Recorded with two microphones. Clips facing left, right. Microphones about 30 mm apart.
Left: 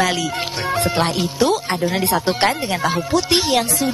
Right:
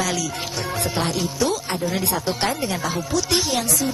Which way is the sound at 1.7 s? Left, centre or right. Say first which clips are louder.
Left 4 dB; left.